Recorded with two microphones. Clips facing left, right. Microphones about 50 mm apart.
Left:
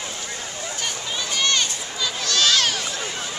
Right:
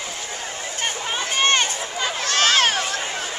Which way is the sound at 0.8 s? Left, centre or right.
Right.